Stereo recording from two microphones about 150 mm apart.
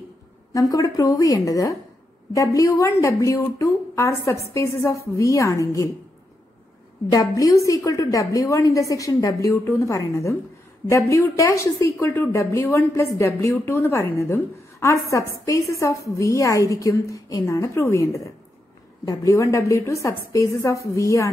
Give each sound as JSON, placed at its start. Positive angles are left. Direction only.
{"t": 0.5, "sound": "a woman's voice", "side_deg": 20}
{"t": 7.1, "sound": "a woman's voice", "side_deg": 25}